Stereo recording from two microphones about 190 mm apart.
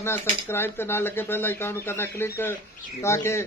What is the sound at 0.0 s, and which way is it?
Speech, 15° left (ahead or behind).